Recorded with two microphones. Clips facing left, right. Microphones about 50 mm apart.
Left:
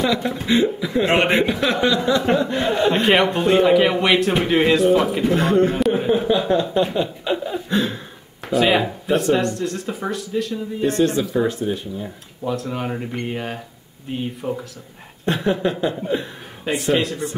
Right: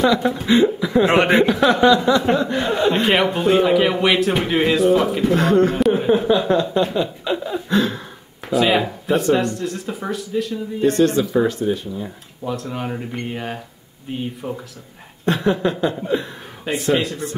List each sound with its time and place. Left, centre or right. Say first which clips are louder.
0.2 s a man's voice: right 3 dB; centre
1.9 s speech: right 4 dB; left
2.2 s a man's voice: even; centre
5.3 s speech: right 2 dB; left
5.8 s a man's voice: right 2 dB; centre
6.5 s speech: right 1 dB; centre
7.7 s speech: right 3 dB; left
8.5 s a man's voice: even; centre
10.9 s speech: right 3 dB; left
12.0 s a man's voice: even; centre
15.2 s speech: right 2 dB; centre
16.6 s a man's voice: even; centre